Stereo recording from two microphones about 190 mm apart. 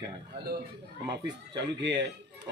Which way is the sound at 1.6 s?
70° right (ahead or behind).